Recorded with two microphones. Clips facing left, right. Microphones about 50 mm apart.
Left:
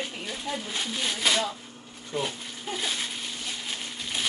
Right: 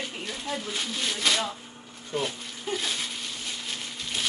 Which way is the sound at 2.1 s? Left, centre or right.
Centre.